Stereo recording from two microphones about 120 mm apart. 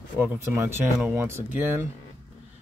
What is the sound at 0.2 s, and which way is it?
Speech, 20° right (ahead or behind).